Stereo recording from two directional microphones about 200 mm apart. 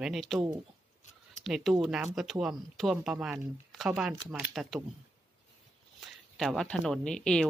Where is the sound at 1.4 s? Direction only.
Centre (ahead or behind).